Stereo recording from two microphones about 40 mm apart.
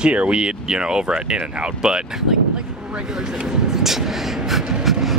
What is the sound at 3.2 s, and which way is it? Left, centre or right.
Vehicle, centre.